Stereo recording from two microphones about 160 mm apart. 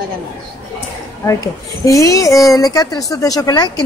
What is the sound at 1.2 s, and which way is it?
A woman's voice, 20° left (ahead or behind).